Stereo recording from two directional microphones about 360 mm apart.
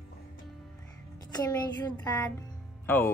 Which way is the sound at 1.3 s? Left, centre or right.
Centre.